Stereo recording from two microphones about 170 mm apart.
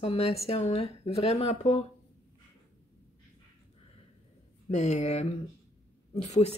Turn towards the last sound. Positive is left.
turn(degrees=40)  # may be behind; listen again after turning